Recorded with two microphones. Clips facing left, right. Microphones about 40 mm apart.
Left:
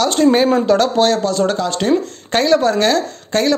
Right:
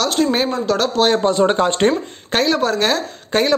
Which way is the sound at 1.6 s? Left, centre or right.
Right.